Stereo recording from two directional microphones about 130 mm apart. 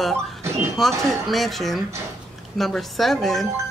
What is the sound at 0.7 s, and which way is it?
Speech, centre (ahead or behind).